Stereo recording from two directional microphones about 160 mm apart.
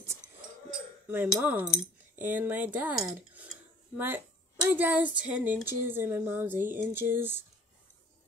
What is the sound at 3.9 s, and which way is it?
Speech, 15° right (ahead or behind).